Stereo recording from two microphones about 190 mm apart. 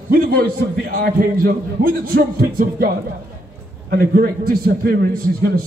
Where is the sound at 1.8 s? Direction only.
50° right (ahead or behind).